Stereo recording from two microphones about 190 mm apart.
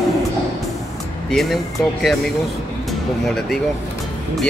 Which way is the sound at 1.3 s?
Centre (ahead or behind).